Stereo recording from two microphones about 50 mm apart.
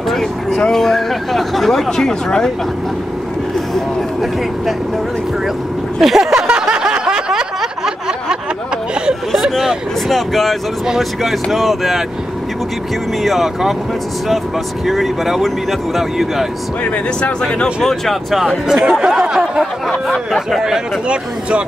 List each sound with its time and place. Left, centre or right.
0.1 s a sound: centre
0.6 s speech: centre
3.7 s speech: centre
5.9 s a sound: centre
6.3 s a sound: centre
9.3 s speech: centre
13.2 s speech: centre
14.9 s speech: centre
17.2 s speech: left
17.8 s speech: centre
18.7 s speech: centre
19.9 s speech: centre
21.1 s speech: right